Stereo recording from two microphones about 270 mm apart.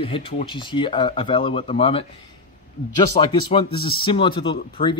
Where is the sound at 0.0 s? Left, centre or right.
Centre.